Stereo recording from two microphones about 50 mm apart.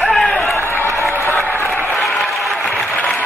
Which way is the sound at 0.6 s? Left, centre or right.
Left.